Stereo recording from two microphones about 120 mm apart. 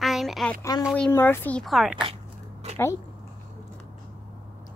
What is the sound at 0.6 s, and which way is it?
Speech, 30° left (ahead or behind).